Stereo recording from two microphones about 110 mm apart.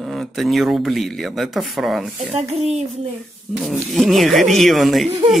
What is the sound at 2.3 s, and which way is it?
Speech, 75° right (ahead or behind).